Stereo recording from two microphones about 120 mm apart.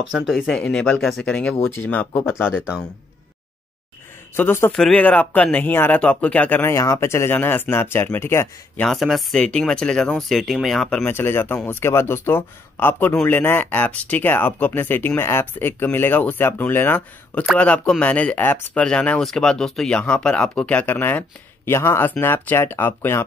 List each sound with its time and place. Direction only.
0.1 s speech: 5° right (ahead or behind)
0.6 s speech: 10° left (ahead or behind)
4.4 s speech: 20° left (ahead or behind)
4.7 s speech: 5° left (ahead or behind)
8.8 s speech: centre (ahead or behind)
11.1 s speech: 20° left (ahead or behind)